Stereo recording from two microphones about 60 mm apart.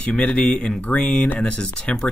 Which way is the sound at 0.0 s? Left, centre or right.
Left.